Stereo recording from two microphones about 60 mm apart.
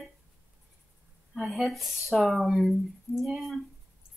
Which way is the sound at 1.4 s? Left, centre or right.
Centre.